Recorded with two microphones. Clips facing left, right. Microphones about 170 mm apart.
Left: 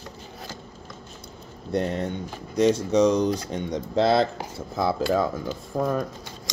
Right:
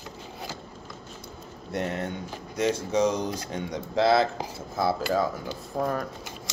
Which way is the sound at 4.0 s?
Centre (ahead or behind).